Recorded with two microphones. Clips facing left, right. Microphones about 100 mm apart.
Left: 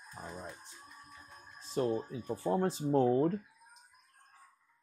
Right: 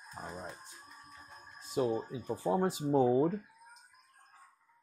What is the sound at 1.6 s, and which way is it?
Speech, 10° right (ahead or behind).